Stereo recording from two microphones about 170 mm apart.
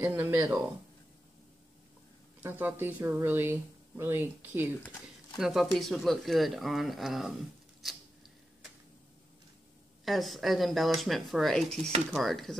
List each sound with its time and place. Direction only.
0.0 s speech: 10° right (ahead or behind)
2.4 s speech: 10° right (ahead or behind)
5.4 s speech: centre (ahead or behind)
10.0 s speech: centre (ahead or behind)